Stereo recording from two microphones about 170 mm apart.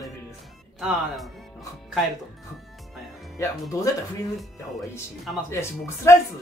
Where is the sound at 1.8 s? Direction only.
Centre (ahead or behind).